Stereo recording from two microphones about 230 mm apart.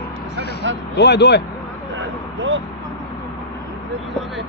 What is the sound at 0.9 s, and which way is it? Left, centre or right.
Speech, left.